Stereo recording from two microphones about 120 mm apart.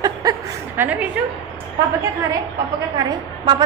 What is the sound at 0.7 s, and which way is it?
Speech, 15° right (ahead or behind).